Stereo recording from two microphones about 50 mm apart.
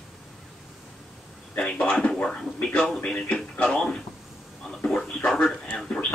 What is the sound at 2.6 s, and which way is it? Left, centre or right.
Speech, centre.